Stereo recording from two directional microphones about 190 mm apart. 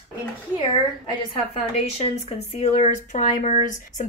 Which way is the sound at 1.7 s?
30° left (ahead or behind).